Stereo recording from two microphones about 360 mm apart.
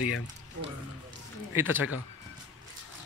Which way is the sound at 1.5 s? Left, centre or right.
Centre.